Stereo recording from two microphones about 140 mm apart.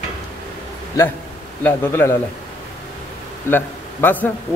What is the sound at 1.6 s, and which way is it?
Speech, 15° left (ahead or behind).